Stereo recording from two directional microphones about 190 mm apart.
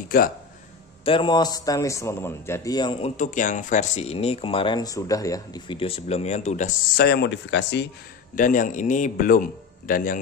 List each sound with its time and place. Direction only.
1.0 s a man's voice: 25° left (ahead or behind)
3.2 s speech: 40° left (ahead or behind)
7.0 s speech: 60° left (ahead or behind)
8.4 s a man's voice: 45° left (ahead or behind)